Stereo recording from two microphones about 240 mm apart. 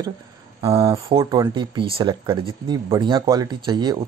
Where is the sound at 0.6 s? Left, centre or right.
Centre.